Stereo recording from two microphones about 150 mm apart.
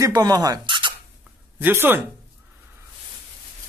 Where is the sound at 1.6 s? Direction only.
15° right (ahead or behind).